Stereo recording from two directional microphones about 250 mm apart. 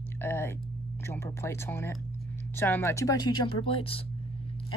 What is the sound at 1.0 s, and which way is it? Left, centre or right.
Speech, centre.